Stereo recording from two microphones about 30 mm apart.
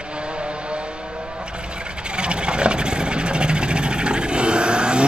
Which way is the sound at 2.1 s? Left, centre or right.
Right.